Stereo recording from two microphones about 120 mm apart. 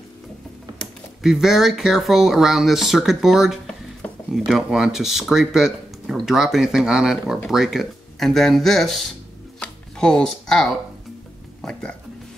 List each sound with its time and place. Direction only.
0.7 s speech: 5° right (ahead or behind)
9.6 s chopping: 5° left (ahead or behind)
11.6 s speech: centre (ahead or behind)